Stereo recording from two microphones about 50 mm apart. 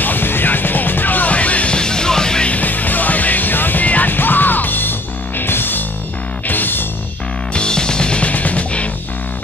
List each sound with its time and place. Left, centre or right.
0.0 s music: left; by 2.5 s centre
2.5 s music: left
7.5 s music: centre